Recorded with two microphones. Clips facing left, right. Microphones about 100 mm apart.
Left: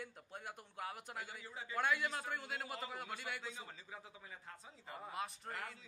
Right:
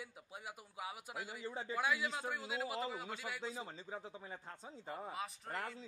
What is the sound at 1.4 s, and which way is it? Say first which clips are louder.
Speech: right 7 dB; 30° right (ahead or behind).